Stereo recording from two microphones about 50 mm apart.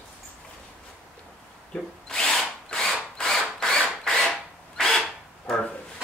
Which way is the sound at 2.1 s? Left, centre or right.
Centre.